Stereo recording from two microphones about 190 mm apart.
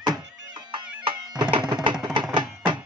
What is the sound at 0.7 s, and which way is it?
Music, 25° right (ahead or behind).